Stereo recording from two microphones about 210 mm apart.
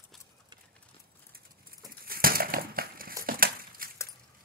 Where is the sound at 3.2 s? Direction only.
45° right (ahead or behind).